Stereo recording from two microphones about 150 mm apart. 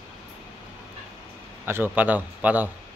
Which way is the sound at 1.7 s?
10° right (ahead or behind).